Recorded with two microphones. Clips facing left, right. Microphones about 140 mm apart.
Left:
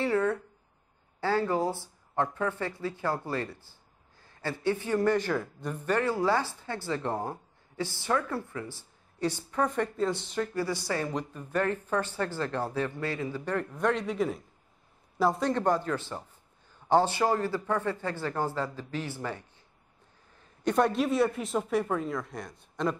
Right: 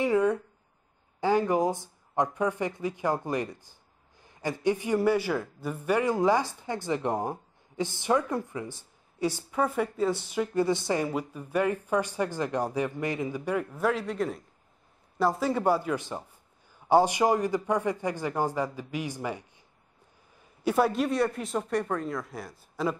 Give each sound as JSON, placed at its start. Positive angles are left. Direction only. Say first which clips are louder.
{"t": 0.0, "sound": "a sound", "louder": "right 3 dB", "side_deg": -15}
{"t": 1.2, "sound": "a man's voice", "louder": "right 3 dB", "side_deg": -15}
{"t": 10.5, "sound": "a man's voice", "louder": "right 9 dB", "side_deg": -20}